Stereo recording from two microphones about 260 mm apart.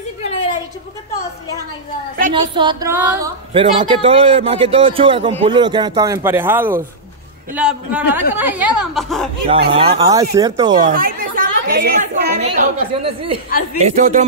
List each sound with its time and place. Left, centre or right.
0.2 s a sound: left
2.3 s a woman's voice: centre
9.7 s a woman's voice: right
10.9 s a woman's voice: right
12.4 s a woman's voice: right